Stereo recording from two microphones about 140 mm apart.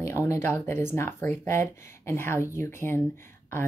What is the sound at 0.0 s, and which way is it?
A woman's voice, 20° left (ahead or behind).